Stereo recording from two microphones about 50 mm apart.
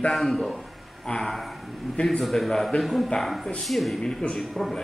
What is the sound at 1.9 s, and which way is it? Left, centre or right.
Speech, centre.